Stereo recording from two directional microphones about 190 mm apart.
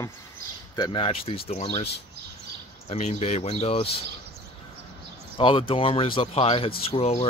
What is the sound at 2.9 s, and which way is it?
Speech, 35° left (ahead or behind).